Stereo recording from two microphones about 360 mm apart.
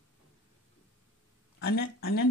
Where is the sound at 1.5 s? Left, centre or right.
Left.